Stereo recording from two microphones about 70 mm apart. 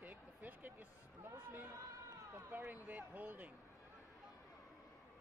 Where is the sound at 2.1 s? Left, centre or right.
Right.